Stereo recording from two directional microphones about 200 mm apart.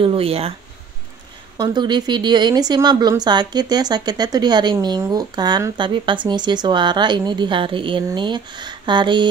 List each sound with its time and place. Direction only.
0.0 s speech: 30° right (ahead or behind)
1.6 s speech: 20° right (ahead or behind)